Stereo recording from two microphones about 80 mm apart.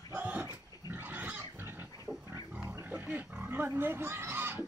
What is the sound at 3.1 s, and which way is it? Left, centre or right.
Pig, right.